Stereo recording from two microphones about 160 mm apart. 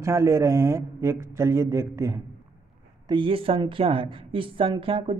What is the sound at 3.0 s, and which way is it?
A woman's voice, 30° right (ahead or behind).